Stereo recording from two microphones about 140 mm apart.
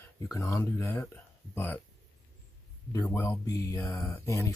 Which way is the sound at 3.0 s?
15° left (ahead or behind).